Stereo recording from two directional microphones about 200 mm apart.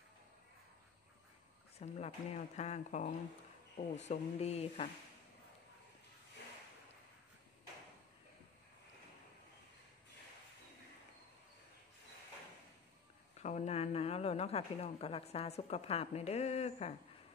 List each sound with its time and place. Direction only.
1.8 s speech: 35° left (ahead or behind)
13.4 s a woman's voice: 35° left (ahead or behind)